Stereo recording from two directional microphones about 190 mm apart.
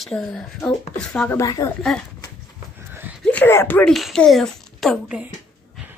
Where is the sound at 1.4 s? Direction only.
20° left (ahead or behind).